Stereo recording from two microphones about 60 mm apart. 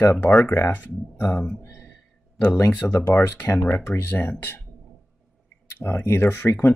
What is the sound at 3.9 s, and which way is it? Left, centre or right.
Speech, left.